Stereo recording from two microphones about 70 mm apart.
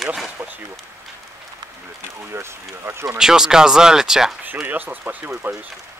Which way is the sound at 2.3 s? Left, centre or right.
Right.